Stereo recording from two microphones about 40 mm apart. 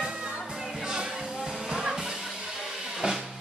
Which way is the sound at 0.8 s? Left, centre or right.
Centre.